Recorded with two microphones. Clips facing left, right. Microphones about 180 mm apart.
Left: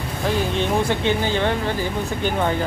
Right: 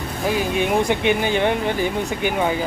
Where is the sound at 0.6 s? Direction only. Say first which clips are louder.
Right 2 dB; 15° right (ahead or behind).